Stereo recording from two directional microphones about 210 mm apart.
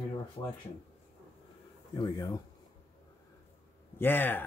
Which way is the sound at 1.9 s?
20° left (ahead or behind).